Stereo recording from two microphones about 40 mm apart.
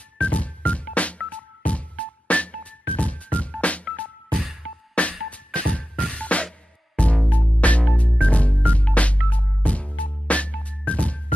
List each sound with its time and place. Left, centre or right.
0.2 s music: left
3.6 s telephone dialing: left
4.9 s music: left